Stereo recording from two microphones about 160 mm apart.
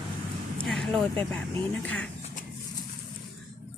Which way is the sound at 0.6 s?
Centre (ahead or behind).